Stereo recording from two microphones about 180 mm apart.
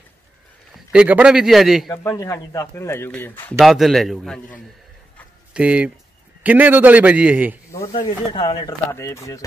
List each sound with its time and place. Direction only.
0.9 s a man's voice: 5° right (ahead or behind)
1.9 s speech: 20° left (ahead or behind)
3.5 s a man's voice: centre (ahead or behind)
7.9 s speech: 25° left (ahead or behind)